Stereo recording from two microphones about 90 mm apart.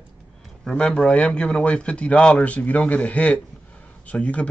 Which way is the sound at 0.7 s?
5° left (ahead or behind).